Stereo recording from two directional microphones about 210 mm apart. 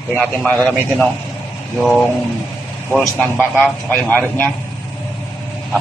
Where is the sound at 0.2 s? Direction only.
5° left (ahead or behind).